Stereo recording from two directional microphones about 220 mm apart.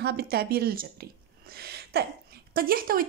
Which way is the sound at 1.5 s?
45° right (ahead or behind).